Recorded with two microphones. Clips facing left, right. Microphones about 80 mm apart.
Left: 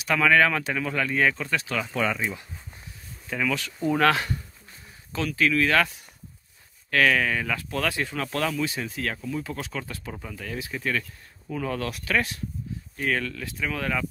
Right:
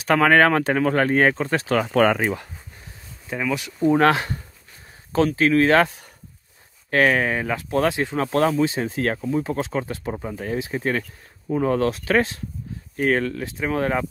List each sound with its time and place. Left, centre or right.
0.0 s speech: right
1.9 s speech: right
3.3 s speech: centre; by 14.0 s right